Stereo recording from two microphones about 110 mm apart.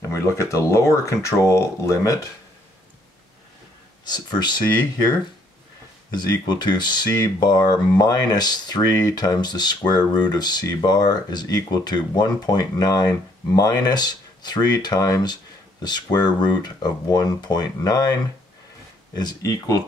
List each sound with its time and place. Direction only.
0.0 s speech: 25° left (ahead or behind)
4.0 s speech: 40° left (ahead or behind)
6.1 s speech: 40° left (ahead or behind)
19.1 s speech: 35° left (ahead or behind)